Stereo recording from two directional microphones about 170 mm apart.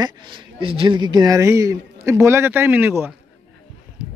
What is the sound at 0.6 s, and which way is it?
Speech, 30° right (ahead or behind).